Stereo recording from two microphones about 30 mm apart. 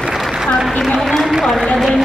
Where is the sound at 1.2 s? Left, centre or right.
Centre.